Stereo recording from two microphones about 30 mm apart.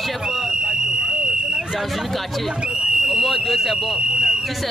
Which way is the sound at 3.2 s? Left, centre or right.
Centre.